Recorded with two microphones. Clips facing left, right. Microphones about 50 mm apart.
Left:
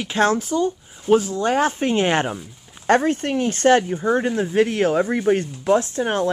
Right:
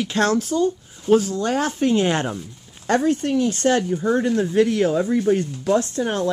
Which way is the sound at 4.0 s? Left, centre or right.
Left.